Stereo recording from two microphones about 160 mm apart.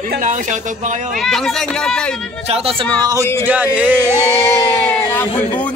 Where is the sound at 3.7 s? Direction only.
10° right (ahead or behind).